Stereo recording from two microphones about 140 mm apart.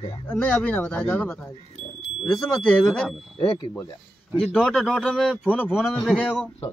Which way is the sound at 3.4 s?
40° left (ahead or behind).